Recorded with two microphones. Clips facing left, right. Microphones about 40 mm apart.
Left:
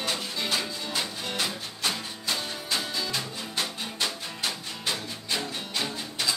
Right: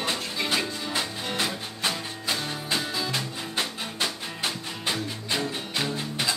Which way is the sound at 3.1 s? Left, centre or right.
Right.